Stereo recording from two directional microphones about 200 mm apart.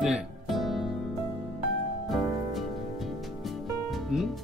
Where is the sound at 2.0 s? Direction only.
Centre (ahead or behind).